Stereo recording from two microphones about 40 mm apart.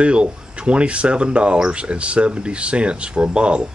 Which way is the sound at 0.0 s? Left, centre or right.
Right.